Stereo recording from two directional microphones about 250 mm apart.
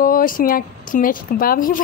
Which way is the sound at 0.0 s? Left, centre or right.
Left.